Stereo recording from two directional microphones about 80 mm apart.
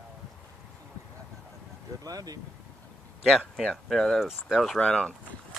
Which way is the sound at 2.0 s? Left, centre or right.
Right.